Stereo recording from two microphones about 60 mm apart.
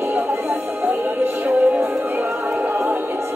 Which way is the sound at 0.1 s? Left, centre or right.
Right.